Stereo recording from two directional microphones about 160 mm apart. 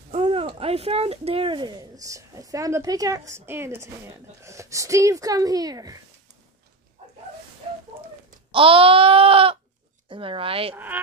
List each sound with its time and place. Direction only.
0.2 s speech: 35° right (ahead or behind)
8.5 s speech: 35° right (ahead or behind)